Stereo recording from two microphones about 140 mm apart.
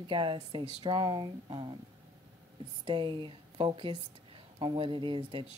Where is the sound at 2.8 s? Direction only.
35° right (ahead or behind).